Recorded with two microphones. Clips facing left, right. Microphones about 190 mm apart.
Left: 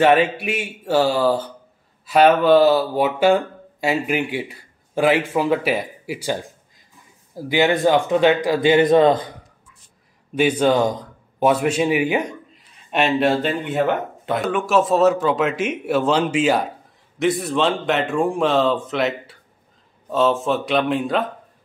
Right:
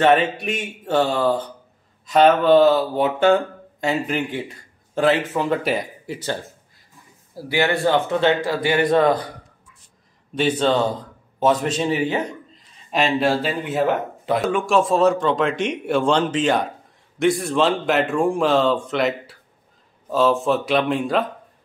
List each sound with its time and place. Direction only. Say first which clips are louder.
0.0 s speech: left 1 dB; 10° left (ahead or behind)
10.3 s a man's voice: left 2 dB; 10° left (ahead or behind)